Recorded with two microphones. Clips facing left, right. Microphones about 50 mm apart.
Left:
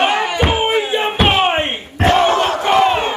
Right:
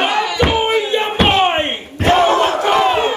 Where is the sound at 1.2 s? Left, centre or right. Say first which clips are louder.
Right 1 dB; centre.